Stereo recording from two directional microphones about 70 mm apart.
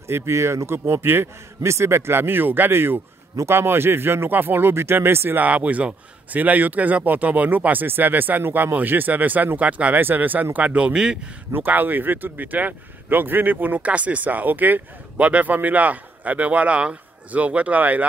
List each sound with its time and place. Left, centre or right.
0.1 s a man's voice: right; by 11.1 s centre
11.5 s speech: right